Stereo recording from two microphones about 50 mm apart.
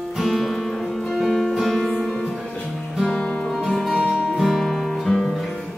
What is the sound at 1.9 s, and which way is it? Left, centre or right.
Music, centre.